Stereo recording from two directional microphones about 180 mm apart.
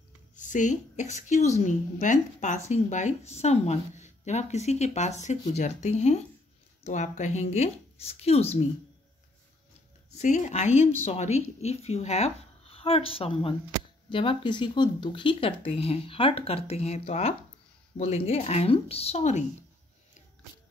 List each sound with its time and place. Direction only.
0.4 s a woman's voice: 45° left (ahead or behind)
10.1 s speech: 40° left (ahead or behind)